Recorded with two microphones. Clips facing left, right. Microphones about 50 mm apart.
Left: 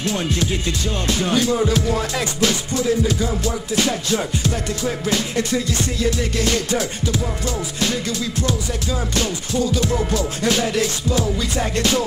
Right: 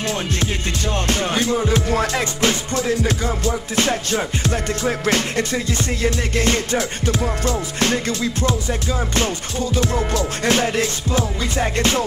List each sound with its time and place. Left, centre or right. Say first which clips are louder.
1.0 s music: left 2 dB; right
5.0 s music: right 1 dB; right
8.2 s music: right 2 dB; right
9.8 s music: even; right
10.1 s music: right 1 dB; right